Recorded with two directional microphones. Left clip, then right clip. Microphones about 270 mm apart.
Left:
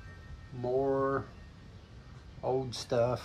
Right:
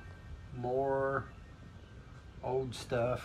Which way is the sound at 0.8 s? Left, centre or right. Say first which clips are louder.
Left 2 dB; centre.